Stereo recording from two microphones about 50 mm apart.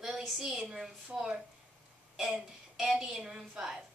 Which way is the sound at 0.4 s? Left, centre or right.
Centre.